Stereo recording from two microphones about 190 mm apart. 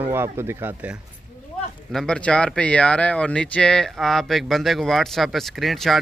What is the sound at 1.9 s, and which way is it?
Speech, 5° left (ahead or behind).